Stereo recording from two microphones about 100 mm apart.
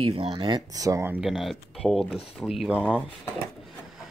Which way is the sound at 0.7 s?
35° right (ahead or behind).